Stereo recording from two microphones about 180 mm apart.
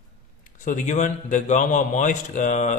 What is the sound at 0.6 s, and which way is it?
A man's voice, 45° left (ahead or behind).